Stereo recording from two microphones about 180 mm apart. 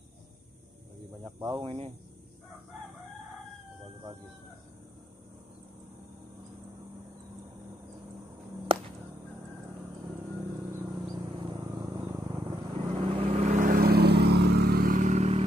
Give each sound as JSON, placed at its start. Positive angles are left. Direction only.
{"t": 1.4, "sound": "speech", "side_deg": -20}
{"t": 8.7, "sound": "whip", "side_deg": -30}
{"t": 10.7, "sound": "vehicle", "side_deg": -15}